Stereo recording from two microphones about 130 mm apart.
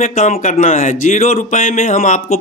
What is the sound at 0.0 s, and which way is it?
Speech, 65° left (ahead or behind).